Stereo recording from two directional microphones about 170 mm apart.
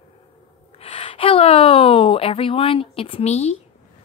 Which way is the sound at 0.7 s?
30° left (ahead or behind).